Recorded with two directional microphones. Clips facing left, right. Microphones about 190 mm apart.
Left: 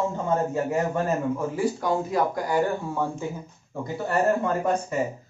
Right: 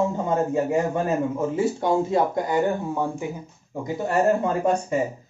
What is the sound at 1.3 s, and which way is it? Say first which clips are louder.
Speech: right 3 dB; 25° right (ahead or behind).